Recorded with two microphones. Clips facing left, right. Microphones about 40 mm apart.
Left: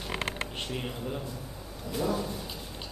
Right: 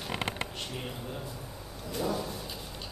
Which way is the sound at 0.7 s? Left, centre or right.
Centre.